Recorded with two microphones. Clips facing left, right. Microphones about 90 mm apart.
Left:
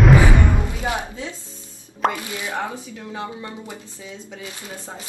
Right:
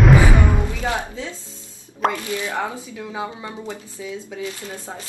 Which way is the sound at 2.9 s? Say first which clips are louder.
Right 2 dB; 15° right (ahead or behind).